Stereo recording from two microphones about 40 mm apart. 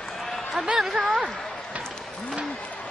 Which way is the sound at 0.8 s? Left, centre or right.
Centre.